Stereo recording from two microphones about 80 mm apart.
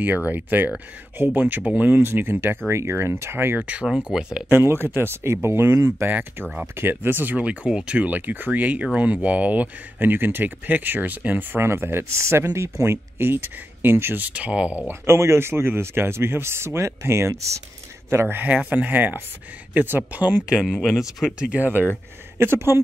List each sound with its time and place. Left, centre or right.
0.0 s speech: right
2.0 s speech: right
3.6 s speech: centre
4.9 s speech: right; by 14.7 s centre
14.9 s speech: right
18.1 s speech: right
20.6 s speech: centre
21.2 s speech: centre
22.4 s speech: right